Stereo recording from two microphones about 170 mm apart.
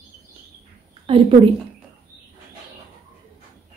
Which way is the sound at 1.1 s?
30° right (ahead or behind).